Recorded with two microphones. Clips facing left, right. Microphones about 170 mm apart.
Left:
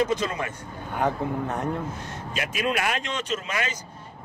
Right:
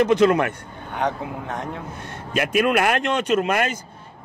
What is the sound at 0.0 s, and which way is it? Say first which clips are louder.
Speech: right 9 dB; 65° right (ahead or behind).